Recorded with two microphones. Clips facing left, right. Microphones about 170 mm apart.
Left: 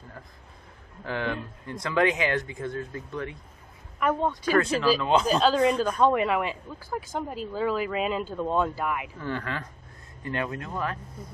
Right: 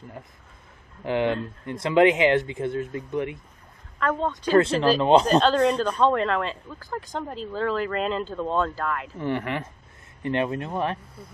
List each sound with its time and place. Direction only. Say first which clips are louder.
1.0 s speech: right 7 dB; 20° right (ahead or behind)
4.0 s speech: even; 15° left (ahead or behind)
4.5 s speech: right 5 dB; 25° right (ahead or behind)
5.2 s speech: right 2 dB; 5° left (ahead or behind)
9.2 s speech: right 5 dB; 20° right (ahead or behind)